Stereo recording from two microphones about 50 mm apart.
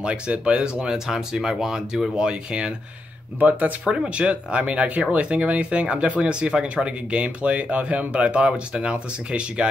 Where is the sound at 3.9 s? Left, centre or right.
Right.